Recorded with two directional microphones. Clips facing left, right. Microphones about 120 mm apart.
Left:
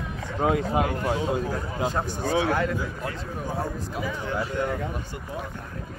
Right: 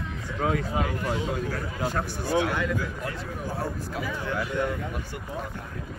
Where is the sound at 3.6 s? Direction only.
20° left (ahead or behind).